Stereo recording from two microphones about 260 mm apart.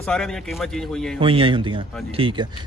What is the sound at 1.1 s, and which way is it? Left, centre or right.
Speech, centre.